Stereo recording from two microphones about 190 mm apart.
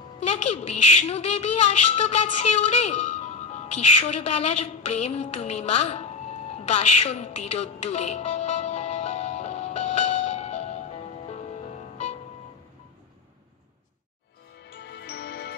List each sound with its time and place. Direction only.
0.2 s a woman's voice: 35° left (ahead or behind)
6.6 s music: 35° left (ahead or behind)
14.7 s music: 65° left (ahead or behind)